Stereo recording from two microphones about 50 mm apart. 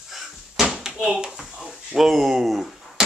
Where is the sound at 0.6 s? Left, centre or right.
Centre.